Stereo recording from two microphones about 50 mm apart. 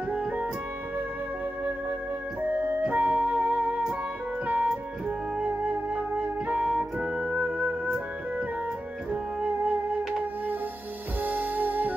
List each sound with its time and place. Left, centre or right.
0.1 s music: right
2.5 s music: right
2.8 s music: right
5.9 s music: right
11.2 s music: right